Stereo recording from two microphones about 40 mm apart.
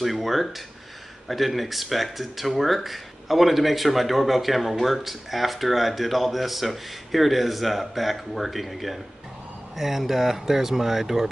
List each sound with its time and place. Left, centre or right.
0.0 s speech: centre